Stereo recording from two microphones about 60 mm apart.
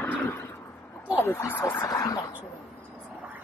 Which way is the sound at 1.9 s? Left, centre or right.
Left.